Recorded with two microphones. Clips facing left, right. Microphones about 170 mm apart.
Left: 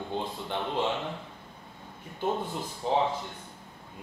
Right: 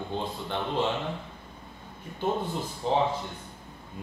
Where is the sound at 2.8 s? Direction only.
10° left (ahead or behind).